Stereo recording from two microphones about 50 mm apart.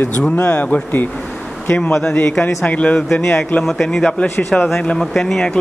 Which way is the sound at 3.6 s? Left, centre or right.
Centre.